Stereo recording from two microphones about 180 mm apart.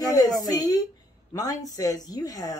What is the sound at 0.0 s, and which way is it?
Speech, 20° left (ahead or behind).